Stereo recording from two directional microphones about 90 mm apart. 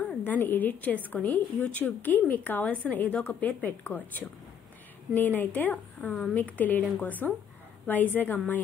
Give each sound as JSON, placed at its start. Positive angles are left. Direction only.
{"t": 0.2, "sound": "a woman's voice", "side_deg": 25}